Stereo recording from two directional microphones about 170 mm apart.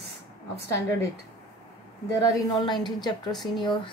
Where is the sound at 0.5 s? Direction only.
15° left (ahead or behind).